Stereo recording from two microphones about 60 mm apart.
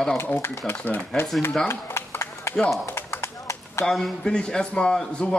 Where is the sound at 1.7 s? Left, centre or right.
Left.